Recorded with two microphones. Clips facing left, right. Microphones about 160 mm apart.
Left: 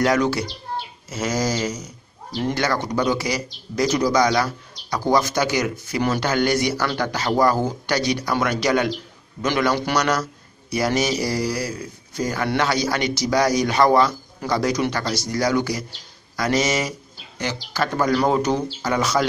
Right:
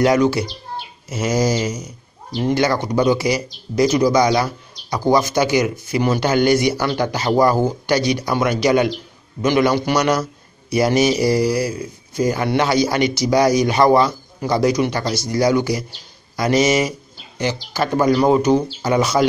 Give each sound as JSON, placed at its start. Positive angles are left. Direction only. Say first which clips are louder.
{"t": 0.0, "sound": "speech", "louder": "right 4 dB", "side_deg": -10}
{"t": 4.1, "sound": "a man's voice", "louder": "right 3 dB", "side_deg": -25}